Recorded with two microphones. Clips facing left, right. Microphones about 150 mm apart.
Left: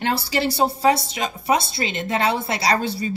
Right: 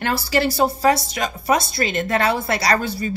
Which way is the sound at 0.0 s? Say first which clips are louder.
Right 2 dB; 25° left (ahead or behind).